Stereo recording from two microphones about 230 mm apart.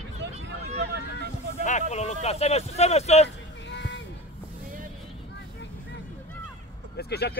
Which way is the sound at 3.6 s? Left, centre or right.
Left.